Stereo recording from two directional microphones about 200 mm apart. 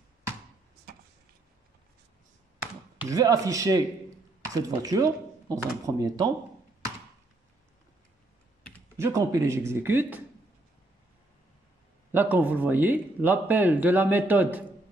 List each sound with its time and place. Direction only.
3.1 s speech: 15° right (ahead or behind)
8.9 s speech: 15° right (ahead or behind)
12.1 s speech: 10° right (ahead or behind)